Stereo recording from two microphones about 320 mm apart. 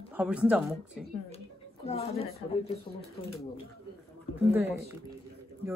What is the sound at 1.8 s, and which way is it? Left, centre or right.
Speech, centre.